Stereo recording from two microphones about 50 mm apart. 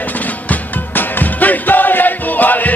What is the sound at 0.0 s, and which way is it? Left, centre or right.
Music, left.